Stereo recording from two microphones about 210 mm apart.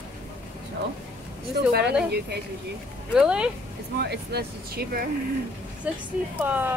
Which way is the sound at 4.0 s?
50° right (ahead or behind).